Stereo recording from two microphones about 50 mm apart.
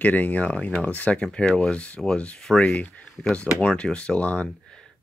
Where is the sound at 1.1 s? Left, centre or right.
Centre.